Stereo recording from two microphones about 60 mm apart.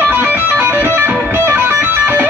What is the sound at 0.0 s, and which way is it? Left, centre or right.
Music, right.